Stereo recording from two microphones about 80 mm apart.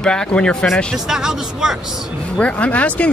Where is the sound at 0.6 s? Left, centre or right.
Centre.